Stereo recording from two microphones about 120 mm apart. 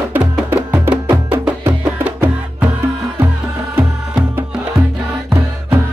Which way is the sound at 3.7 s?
15° right (ahead or behind).